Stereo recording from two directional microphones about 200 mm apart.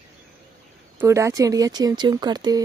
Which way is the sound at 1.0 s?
15° right (ahead or behind).